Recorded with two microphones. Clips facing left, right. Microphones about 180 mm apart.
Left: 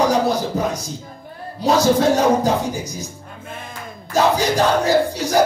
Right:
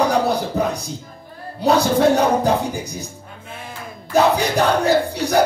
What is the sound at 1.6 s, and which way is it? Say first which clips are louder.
Music: even; 60° right (ahead or behind).